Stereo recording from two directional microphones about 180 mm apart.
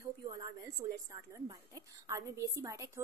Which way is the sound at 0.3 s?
20° right (ahead or behind).